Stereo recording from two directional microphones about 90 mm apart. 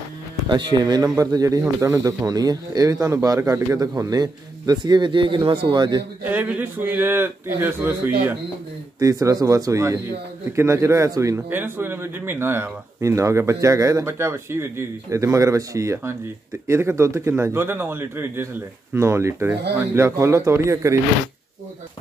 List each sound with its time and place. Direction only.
0.5 s speech: 60° right (ahead or behind)
6.2 s a man's voice: 20° right (ahead or behind)
9.0 s a man's voice: 40° right (ahead or behind)